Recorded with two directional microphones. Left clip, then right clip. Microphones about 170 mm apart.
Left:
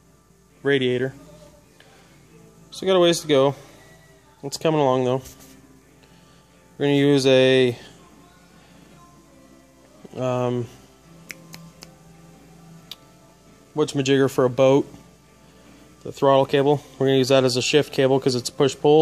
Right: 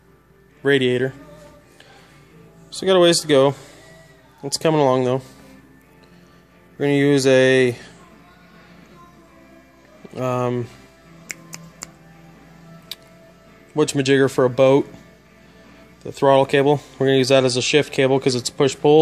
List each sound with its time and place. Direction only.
0.6 s speech: 10° right (ahead or behind)
2.7 s speech: 5° right (ahead or behind)
6.8 s speech: 5° left (ahead or behind)
10.1 s speech: centre (ahead or behind)
11.2 s music: 15° left (ahead or behind)
12.9 s music: centre (ahead or behind)
13.9 s speech: centre (ahead or behind)
16.0 s speech: centre (ahead or behind)